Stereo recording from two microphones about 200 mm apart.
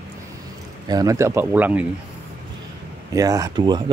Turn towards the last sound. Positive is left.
turn(degrees=-20)  # may be behind; listen again after turning